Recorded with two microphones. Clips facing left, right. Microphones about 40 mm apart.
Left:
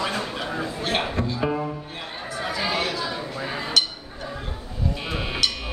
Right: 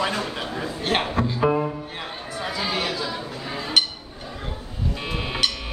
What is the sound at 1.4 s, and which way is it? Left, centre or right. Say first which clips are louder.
Music: right 5 dB; centre.